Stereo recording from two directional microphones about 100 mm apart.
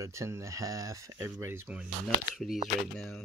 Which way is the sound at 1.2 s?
25° right (ahead or behind).